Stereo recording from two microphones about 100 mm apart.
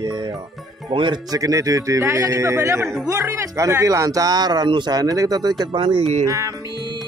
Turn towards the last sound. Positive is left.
turn(degrees=-30)  # may be behind; listen again after turning